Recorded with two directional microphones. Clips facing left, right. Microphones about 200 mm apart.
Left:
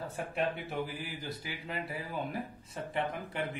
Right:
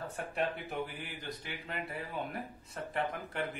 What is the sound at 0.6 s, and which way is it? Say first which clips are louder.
A man's voice: left 2 dB; centre (ahead or behind).